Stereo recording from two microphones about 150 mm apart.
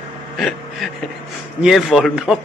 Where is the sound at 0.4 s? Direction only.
Centre (ahead or behind).